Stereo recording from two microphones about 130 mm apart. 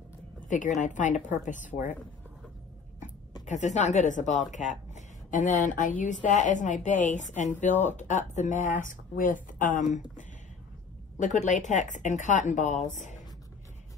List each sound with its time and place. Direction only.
0.5 s speech: 75° left (ahead or behind)
3.4 s speech: 60° left (ahead or behind)
11.1 s speech: 70° left (ahead or behind)